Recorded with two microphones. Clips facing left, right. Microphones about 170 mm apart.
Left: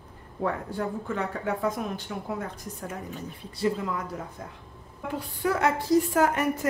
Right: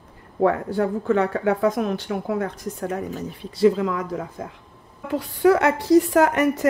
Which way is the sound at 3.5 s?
90° right.